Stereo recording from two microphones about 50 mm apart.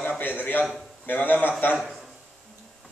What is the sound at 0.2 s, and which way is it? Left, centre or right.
A man's voice, left.